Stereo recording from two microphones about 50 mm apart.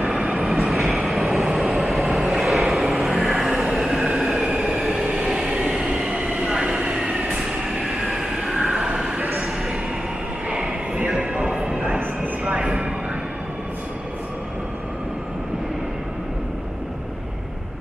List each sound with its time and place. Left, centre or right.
0.0 s vehicle: centre
0.7 s vehicle: centre
3.7 s train: centre
4.6 s train: centre
4.9 s train: centre
5.8 s subway: centre
7.3 s train: centre
10.5 s a sound: centre